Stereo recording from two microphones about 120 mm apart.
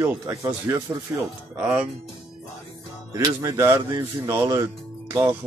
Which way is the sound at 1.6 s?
10° right (ahead or behind).